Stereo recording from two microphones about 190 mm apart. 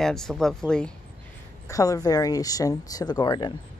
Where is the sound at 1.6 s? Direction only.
15° left (ahead or behind).